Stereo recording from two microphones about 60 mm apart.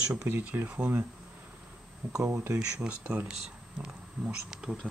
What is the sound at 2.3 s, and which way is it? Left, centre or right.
Speech, right.